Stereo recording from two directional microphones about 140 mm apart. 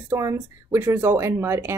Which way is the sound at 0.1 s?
20° right (ahead or behind).